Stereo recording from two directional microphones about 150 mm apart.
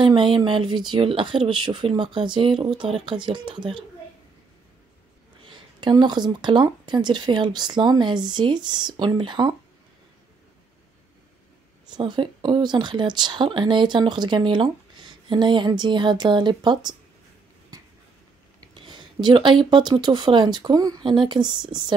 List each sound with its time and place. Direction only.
0.0 s speech: 35° right (ahead or behind)
5.4 s speech: 30° right (ahead or behind)
12.0 s speech: 30° right (ahead or behind)
17.7 s a sound: 25° right (ahead or behind)
18.8 s speech: 30° right (ahead or behind)